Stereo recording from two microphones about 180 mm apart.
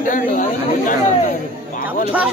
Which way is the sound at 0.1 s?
45° left (ahead or behind).